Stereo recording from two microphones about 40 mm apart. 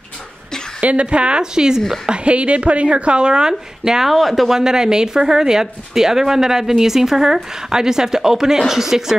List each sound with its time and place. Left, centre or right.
0.7 s a woman's voice: right
2.0 s a woman's voice: right
4.1 s speech: centre
4.6 s speech: centre